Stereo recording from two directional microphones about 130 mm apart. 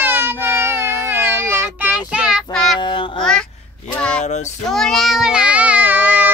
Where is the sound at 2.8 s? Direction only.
40° left (ahead or behind).